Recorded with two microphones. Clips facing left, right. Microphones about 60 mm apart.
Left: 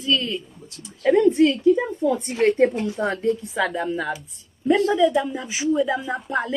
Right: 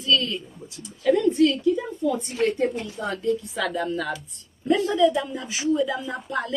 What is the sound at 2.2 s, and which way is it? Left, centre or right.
Speech, left.